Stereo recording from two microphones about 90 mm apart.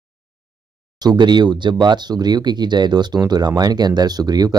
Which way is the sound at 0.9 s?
50° right (ahead or behind).